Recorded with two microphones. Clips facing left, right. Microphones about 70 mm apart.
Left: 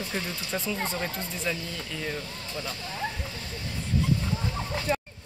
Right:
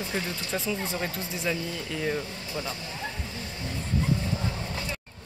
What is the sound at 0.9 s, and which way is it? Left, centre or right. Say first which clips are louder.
Speech: right 1 dB; centre.